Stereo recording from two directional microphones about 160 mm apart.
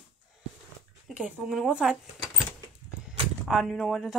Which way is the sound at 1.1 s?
5° right (ahead or behind).